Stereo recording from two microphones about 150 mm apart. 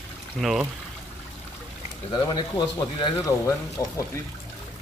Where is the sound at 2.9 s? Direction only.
25° left (ahead or behind).